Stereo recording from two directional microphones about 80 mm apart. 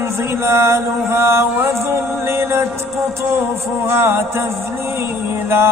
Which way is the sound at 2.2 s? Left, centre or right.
Right.